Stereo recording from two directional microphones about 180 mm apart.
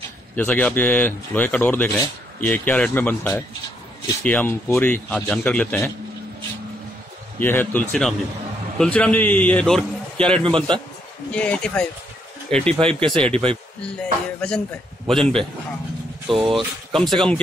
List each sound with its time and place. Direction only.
0.4 s a man's voice: 10° left (ahead or behind)
7.3 s a man's voice: 10° left (ahead or behind)
10.4 s a man's voice: 30° right (ahead or behind)
11.3 s a man's voice: 5° left (ahead or behind)
16.3 s a man's voice: 30° right (ahead or behind)
16.9 s speech: centre (ahead or behind)